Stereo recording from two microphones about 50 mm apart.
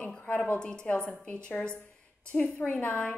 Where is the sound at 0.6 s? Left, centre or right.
Centre.